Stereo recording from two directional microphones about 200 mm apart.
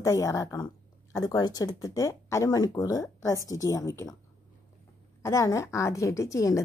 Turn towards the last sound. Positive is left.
turn(degrees=15)  # may be behind; listen again after turning